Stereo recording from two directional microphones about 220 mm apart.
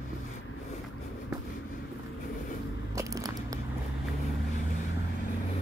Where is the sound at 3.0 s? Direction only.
15° right (ahead or behind).